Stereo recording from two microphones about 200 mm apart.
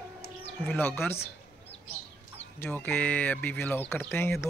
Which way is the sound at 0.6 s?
10° left (ahead or behind).